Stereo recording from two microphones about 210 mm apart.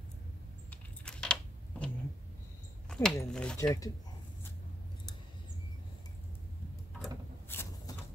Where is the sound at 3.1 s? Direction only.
10° left (ahead or behind).